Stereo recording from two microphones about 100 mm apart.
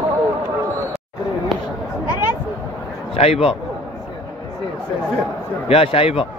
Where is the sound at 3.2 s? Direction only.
85° left.